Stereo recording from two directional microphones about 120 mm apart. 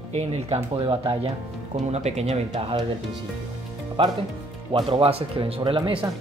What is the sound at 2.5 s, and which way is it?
Speech, 55° right (ahead or behind).